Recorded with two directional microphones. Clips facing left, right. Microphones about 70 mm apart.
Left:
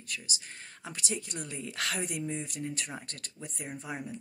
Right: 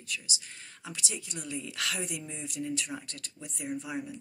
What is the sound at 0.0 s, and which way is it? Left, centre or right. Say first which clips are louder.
Speech: right 1 dB; left.